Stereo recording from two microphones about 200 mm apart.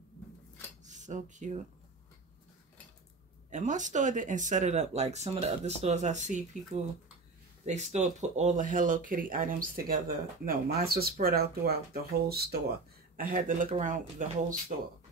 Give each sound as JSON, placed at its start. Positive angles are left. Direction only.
{"t": 0.8, "sound": "speech", "side_deg": -35}
{"t": 3.4, "sound": "speech", "side_deg": -40}